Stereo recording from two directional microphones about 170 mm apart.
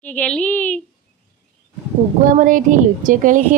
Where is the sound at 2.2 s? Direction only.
50° right (ahead or behind).